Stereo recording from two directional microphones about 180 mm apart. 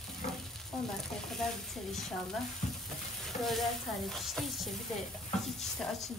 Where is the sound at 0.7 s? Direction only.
Centre (ahead or behind).